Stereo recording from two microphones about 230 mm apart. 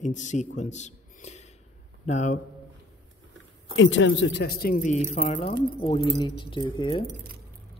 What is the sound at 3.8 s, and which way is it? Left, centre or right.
Speech, left.